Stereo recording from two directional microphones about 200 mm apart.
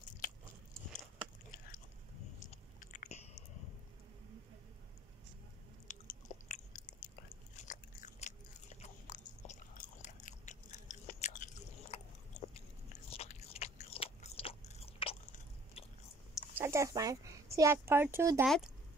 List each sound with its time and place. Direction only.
2.4 s biting: 40° left (ahead or behind)
5.9 s chewing: 40° left (ahead or behind)
7.6 s biting: 40° left (ahead or behind)
16.5 s speech: 15° right (ahead or behind)
18.4 s speech: centre (ahead or behind)